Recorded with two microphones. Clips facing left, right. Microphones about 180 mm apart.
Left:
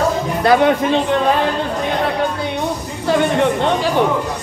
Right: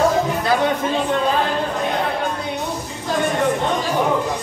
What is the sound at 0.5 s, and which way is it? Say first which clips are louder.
Speech: left 9 dB; 70° left (ahead or behind).